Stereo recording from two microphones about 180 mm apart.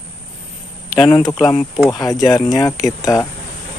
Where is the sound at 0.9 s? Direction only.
10° left (ahead or behind).